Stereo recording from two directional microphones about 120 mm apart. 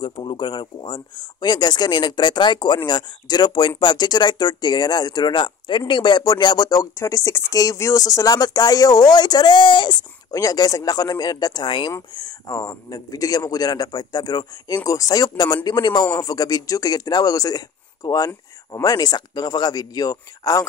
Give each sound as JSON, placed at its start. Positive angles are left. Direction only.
{"t": 0.0, "sound": "speech", "side_deg": 45}